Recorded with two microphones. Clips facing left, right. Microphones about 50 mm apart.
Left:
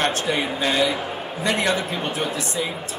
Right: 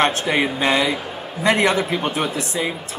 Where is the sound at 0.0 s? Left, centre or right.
Right.